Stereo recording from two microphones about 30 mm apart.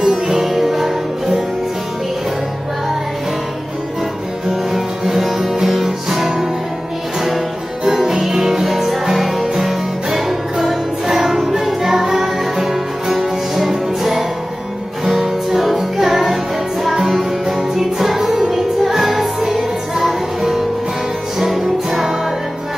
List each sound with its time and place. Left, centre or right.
0.0 s music: centre
4.5 s music: centre
7.9 s music: centre
15.5 s music: centre
18.9 s music: centre